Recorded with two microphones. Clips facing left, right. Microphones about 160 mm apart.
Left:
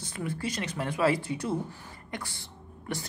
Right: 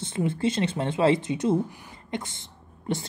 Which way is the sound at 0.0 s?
25° right (ahead or behind).